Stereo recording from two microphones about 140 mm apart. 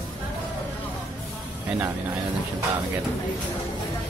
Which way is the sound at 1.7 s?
15° right (ahead or behind).